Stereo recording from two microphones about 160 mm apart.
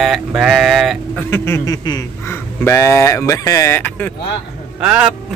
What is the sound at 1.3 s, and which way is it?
Speech, 15° left (ahead or behind).